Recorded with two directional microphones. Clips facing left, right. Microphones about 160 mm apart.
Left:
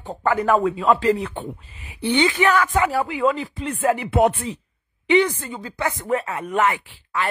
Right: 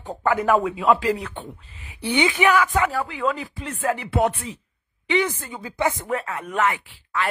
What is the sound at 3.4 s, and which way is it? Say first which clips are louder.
Speech: left 4 dB; centre (ahead or behind).